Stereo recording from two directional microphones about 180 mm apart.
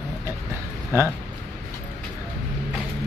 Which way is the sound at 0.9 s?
15° right (ahead or behind).